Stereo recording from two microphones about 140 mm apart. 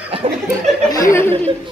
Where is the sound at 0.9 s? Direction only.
25° left (ahead or behind).